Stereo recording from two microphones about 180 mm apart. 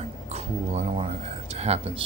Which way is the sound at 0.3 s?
40° right (ahead or behind).